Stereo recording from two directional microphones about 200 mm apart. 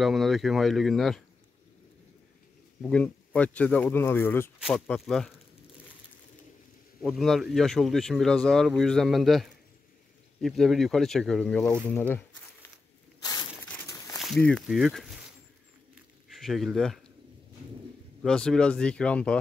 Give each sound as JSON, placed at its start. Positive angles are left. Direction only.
{"t": 0.0, "sound": "speech", "side_deg": 0}
{"t": 2.8, "sound": "speech", "side_deg": 5}
{"t": 7.0, "sound": "speech", "side_deg": 0}
{"t": 13.2, "sound": "a sound", "side_deg": 20}
{"t": 14.1, "sound": "speech", "side_deg": 0}
{"t": 15.9, "sound": "biting", "side_deg": 0}
{"t": 18.2, "sound": "speech", "side_deg": 5}